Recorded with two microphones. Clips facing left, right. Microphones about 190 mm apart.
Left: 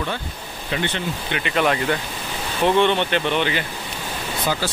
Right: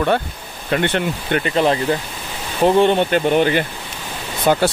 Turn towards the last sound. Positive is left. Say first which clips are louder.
# right 8 dB
turn(degrees=-55)  # may be behind; listen again after turning